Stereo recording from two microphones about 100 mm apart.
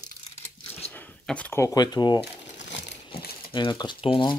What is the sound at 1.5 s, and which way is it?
Speech, 35° left (ahead or behind).